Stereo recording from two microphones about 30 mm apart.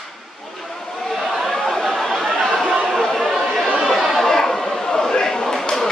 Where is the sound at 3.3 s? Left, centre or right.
Centre.